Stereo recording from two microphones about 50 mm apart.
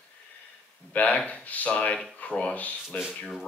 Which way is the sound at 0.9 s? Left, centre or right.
Left.